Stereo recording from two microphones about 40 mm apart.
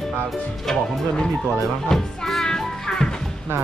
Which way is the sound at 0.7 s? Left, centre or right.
Centre.